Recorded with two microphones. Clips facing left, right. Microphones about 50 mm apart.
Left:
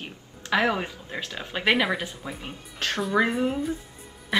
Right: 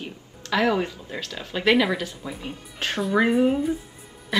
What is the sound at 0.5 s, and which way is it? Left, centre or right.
Speech, centre.